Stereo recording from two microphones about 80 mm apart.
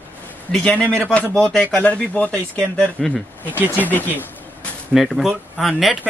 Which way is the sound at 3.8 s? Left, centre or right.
Left.